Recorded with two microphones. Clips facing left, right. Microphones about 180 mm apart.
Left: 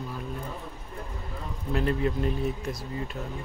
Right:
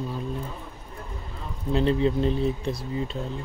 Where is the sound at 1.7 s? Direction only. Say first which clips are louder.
Right 5 dB; 25° right (ahead or behind).